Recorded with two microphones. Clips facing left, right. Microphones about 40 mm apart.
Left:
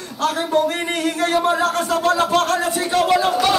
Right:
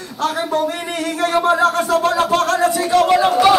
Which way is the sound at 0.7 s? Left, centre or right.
Left.